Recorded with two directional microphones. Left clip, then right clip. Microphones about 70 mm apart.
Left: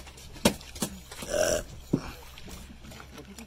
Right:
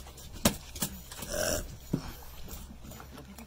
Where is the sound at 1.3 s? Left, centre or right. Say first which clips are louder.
Left 6 dB; centre.